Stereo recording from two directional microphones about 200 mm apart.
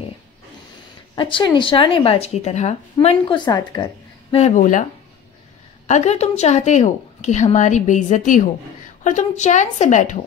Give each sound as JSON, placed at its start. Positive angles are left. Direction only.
{"t": 1.1, "sound": "speech", "side_deg": 20}
{"t": 5.9, "sound": "a woman's voice", "side_deg": 35}